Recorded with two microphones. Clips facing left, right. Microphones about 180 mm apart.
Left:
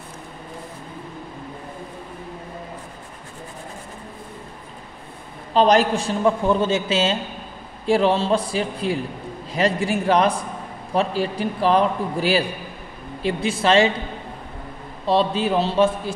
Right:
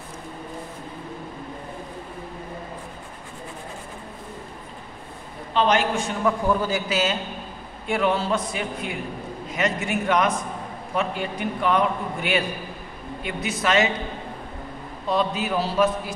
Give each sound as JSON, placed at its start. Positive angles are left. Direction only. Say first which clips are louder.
{"t": 5.5, "sound": "a man's voice", "louder": "left 5 dB", "side_deg": 40}
{"t": 15.0, "sound": "a man's voice", "louder": "left 4 dB", "side_deg": 30}